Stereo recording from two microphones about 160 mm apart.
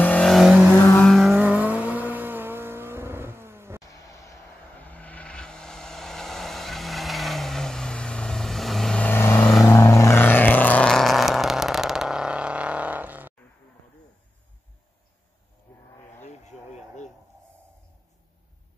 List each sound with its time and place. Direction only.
0.0 s vehicle: 5° left (ahead or behind); by 3.8 s 15° right (ahead or behind)
3.8 s vehicle: 20° left (ahead or behind); by 13.3 s 10° right (ahead or behind)
16.2 s a sound: 45° left (ahead or behind)